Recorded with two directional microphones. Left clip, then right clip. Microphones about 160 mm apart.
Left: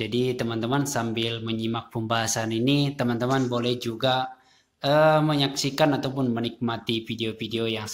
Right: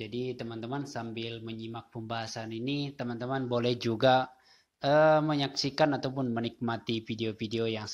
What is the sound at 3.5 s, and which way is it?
Speech, 40° right (ahead or behind).